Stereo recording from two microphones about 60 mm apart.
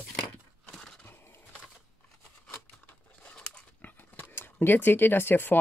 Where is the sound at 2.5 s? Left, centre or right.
Left.